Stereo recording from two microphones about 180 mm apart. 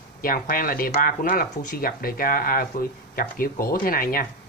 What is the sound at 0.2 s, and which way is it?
Speech, 55° left (ahead or behind).